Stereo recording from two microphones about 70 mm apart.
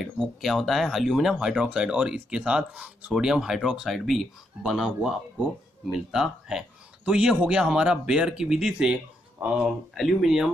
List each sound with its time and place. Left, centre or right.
0.4 s speech: centre
9.4 s speech: right
9.9 s speech: centre